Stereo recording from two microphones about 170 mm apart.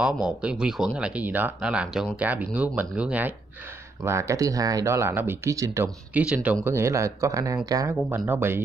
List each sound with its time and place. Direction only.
0.0 s speech: 5° right (ahead or behind)